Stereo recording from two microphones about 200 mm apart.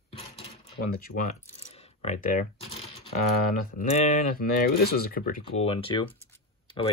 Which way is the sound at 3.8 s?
35° left (ahead or behind).